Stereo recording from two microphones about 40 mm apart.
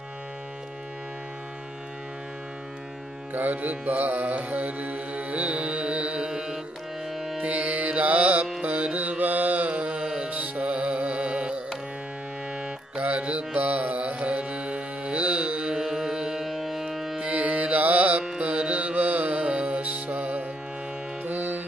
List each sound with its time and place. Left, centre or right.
3.3 s music: right; by 6.6 s centre
7.2 s music: centre
7.4 s music: right
8.9 s mantra: right
10.0 s music: right
10.3 s music: right
12.6 s carnatic music: right
16.4 s civil defense siren: centre
17.2 s music: right
18.4 s music: right
21.2 s music: right